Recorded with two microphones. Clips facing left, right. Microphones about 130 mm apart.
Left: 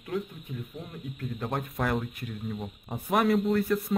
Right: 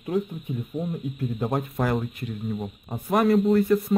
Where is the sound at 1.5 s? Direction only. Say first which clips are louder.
Right 3 dB; centre (ahead or behind).